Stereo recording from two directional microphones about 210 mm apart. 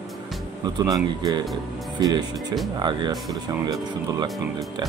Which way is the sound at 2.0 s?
20° right (ahead or behind).